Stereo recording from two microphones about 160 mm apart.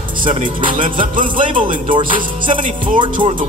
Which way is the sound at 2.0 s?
55° right (ahead or behind).